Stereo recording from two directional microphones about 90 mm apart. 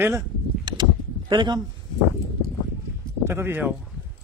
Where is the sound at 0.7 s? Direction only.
50° right (ahead or behind).